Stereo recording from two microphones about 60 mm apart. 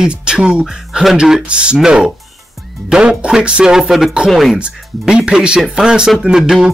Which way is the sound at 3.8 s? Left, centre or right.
Centre.